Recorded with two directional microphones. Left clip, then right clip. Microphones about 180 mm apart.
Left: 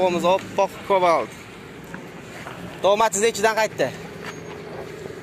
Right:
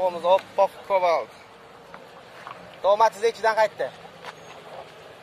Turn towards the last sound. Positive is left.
turn(degrees=15)  # may be behind; listen again after turning